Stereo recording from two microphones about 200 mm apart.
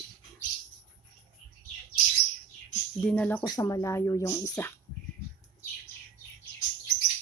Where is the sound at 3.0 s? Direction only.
5° left (ahead or behind).